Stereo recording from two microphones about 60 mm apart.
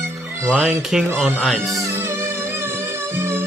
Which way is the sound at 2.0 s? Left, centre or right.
Right.